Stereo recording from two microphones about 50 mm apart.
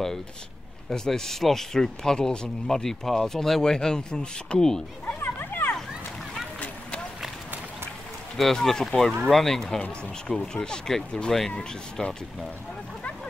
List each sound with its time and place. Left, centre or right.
0.8 s speech: centre
5.0 s a sound: left
8.4 s speech: centre
9.8 s speech: centre